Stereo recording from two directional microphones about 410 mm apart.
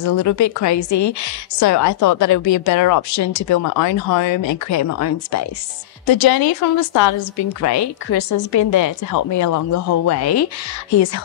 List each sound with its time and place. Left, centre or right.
0.0 s a woman's voice: left
6.0 s a woman's voice: left